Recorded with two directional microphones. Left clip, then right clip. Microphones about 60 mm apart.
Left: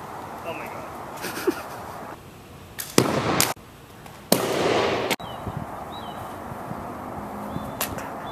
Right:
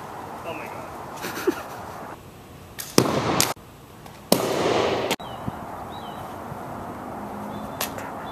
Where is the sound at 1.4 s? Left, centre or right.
Centre.